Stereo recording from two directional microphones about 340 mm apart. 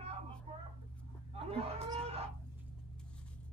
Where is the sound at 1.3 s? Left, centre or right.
Centre.